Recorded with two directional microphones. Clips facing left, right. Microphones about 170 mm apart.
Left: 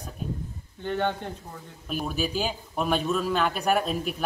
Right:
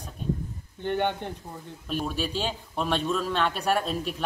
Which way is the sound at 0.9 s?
15° right (ahead or behind).